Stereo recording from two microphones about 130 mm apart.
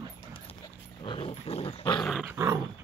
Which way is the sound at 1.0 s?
45° left (ahead or behind).